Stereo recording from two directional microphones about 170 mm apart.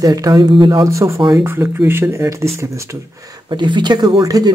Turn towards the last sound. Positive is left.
turn(degrees=-20)  # may be behind; listen again after turning